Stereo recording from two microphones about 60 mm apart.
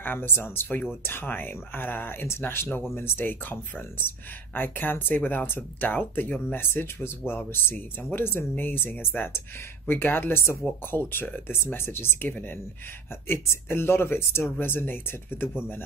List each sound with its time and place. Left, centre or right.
0.0 s speech: left
4.6 s speech: left
12.3 s speech: left
13.3 s speech: left